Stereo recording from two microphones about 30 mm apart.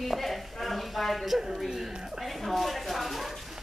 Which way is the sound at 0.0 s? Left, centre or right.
Centre.